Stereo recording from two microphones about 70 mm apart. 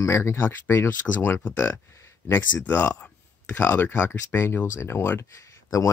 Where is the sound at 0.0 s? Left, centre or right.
Left.